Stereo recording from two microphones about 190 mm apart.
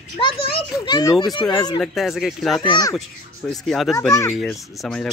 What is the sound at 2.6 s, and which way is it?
Speech, 20° left (ahead or behind).